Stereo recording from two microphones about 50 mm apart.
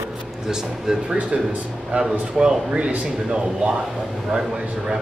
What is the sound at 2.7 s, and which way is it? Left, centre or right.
Speech, right.